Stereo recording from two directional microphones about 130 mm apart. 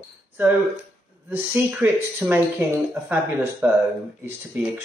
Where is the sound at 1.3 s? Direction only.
15° right (ahead or behind).